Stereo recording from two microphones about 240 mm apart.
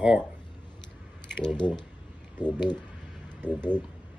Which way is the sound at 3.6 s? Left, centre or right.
Centre.